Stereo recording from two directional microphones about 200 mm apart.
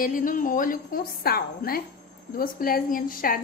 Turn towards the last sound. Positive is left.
turn(degrees=45)  # may be behind; listen again after turning